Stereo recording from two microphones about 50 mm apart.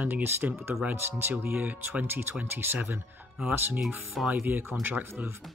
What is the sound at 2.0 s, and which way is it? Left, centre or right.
Speech, right.